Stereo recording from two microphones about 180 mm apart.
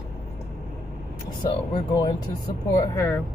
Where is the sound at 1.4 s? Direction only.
25° left (ahead or behind).